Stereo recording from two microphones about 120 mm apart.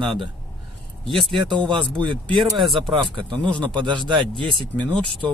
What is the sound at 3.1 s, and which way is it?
Speech, 40° right (ahead or behind).